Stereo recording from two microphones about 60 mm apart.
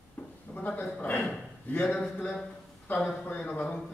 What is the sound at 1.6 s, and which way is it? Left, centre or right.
Speech, left.